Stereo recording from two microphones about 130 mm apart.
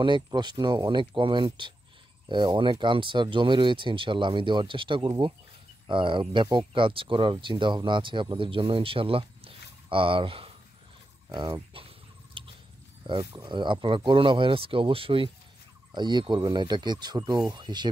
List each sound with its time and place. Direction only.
0.0 s speech: 35° right (ahead or behind)
11.2 s speech: 35° right (ahead or behind)
12.4 s a sound: 40° right (ahead or behind)
13.0 s speech: 40° right (ahead or behind)